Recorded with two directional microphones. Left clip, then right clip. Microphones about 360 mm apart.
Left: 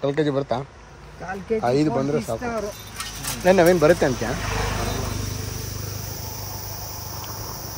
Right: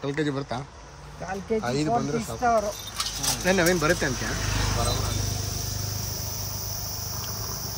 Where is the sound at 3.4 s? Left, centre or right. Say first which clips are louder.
Left 8 dB; centre.